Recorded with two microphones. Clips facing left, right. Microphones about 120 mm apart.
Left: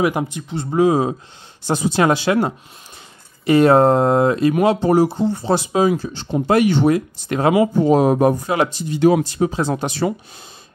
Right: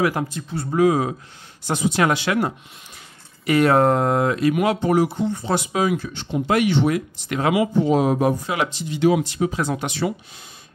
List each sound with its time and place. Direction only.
0.0 s speech: 20° left (ahead or behind); by 10.1 s 40° left (ahead or behind)